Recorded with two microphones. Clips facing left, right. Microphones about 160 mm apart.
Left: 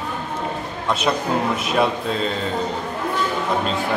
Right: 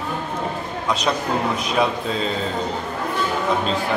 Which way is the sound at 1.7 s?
Centre (ahead or behind).